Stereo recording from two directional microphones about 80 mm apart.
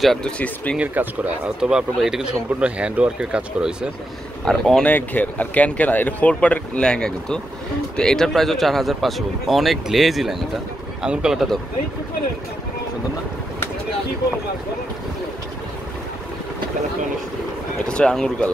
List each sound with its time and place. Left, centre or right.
0.0 s speech: centre
0.7 s speech: centre
4.5 s speech: centre
4.8 s speech: left; by 11.4 s centre
17.8 s speech: centre